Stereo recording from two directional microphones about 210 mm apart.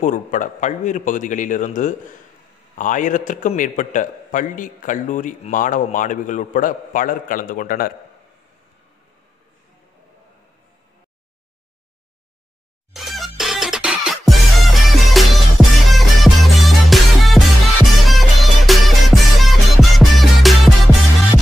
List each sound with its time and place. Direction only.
0.0 s a man's voice: 35° left (ahead or behind)
12.9 s music: centre (ahead or behind)